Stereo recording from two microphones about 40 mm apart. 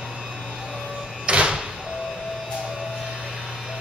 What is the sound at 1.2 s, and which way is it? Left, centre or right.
Door, right.